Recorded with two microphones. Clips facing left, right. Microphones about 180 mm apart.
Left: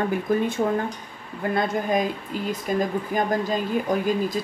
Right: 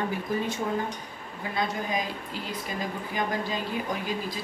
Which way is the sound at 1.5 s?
50° left (ahead or behind).